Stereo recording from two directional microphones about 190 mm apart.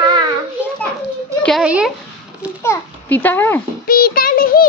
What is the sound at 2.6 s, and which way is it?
A child's voice, 10° left (ahead or behind).